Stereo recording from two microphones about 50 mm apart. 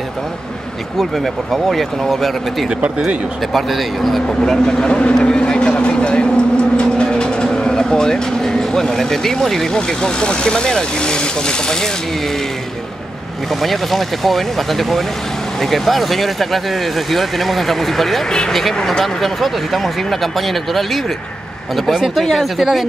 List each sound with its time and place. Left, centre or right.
0.9 s speech: centre
3.5 s speech: centre
13.5 s speech: centre